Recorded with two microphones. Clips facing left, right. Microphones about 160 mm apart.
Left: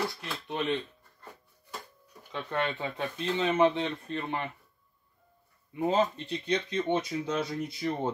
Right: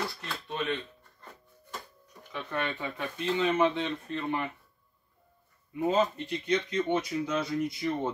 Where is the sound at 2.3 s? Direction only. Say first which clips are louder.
Left 2 dB; 20° left (ahead or behind).